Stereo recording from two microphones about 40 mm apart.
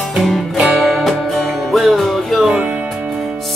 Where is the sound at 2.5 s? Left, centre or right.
Right.